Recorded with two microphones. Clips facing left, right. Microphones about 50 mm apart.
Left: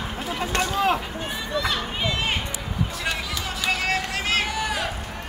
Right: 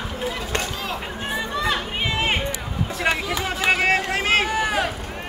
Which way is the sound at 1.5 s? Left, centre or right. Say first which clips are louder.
Left 1 dB; right.